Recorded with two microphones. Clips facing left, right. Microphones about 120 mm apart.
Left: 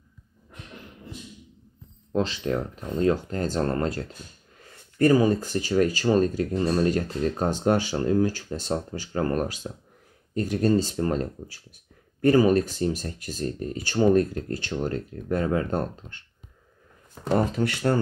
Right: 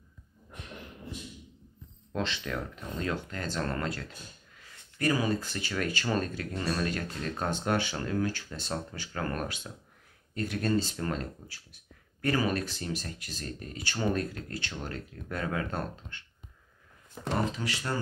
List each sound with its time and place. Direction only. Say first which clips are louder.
2.1 s speech: left 8 dB; 35° left (ahead or behind)
17.3 s speech: left 8 dB; 50° left (ahead or behind)